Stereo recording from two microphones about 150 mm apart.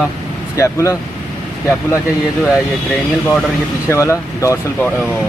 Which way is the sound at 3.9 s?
20° left (ahead or behind).